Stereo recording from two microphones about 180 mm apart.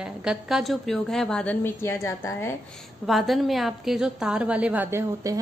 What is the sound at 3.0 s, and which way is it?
A woman's voice, centre (ahead or behind).